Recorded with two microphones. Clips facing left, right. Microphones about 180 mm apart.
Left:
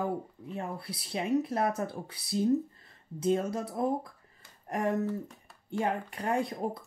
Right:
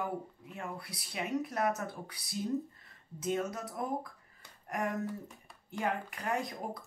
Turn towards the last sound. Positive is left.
turn(degrees=30)  # may be behind; listen again after turning